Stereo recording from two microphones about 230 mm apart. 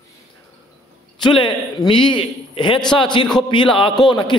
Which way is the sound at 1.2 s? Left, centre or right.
Centre.